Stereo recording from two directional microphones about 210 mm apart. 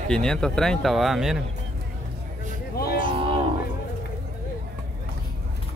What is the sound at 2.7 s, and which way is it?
Speech, 45° left (ahead or behind).